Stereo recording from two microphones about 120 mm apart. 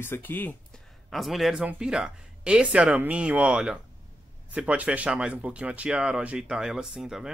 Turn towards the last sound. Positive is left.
turn(degrees=-5)  # may be behind; listen again after turning